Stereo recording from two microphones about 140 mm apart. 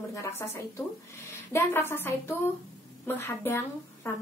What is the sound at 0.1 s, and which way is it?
A woman's voice, 20° left (ahead or behind).